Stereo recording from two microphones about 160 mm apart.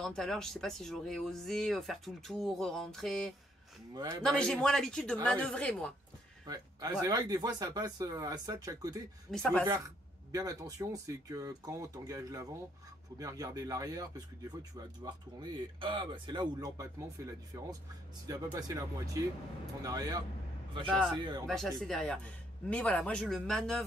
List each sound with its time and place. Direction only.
0.0 s speech: centre (ahead or behind)
3.9 s speech: 25° right (ahead or behind)
4.2 s speech: 5° left (ahead or behind)
6.4 s speech: 25° right (ahead or behind)
9.3 s speech: 5° left (ahead or behind)
9.7 s speech: 20° right (ahead or behind)
21.2 s speech: 25° right (ahead or behind)
21.5 s speech: centre (ahead or behind)